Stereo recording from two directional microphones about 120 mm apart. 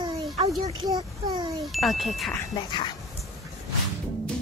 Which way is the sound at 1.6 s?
Centre (ahead or behind).